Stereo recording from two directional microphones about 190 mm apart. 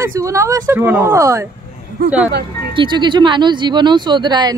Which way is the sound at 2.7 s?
25° right (ahead or behind).